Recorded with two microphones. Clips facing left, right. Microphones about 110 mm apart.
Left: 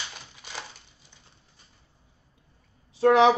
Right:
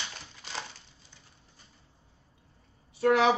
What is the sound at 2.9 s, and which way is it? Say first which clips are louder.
Speech: left 5 dB; 30° left (ahead or behind).